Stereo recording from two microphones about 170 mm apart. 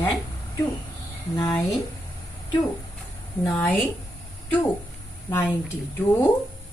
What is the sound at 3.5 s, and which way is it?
Speech, 10° left (ahead or behind).